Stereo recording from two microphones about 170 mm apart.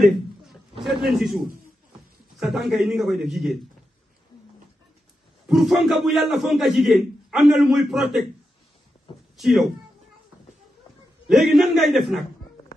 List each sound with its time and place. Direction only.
0.0 s a man's voice: centre (ahead or behind)
5.5 s a man's voice: centre (ahead or behind)
9.4 s a man's voice: centre (ahead or behind)
11.2 s a man's voice: centre (ahead or behind)